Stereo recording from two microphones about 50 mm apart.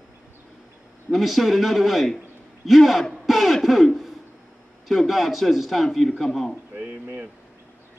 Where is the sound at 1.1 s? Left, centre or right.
Centre.